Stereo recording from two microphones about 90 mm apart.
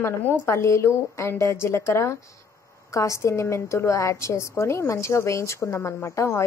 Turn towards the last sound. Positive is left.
turn(degrees=30)  # may be behind; listen again after turning